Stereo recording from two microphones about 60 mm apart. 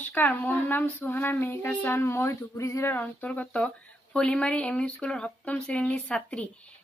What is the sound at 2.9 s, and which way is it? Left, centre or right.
Speech, left.